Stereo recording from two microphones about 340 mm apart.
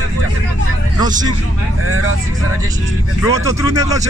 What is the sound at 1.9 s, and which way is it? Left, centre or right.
Speech, right.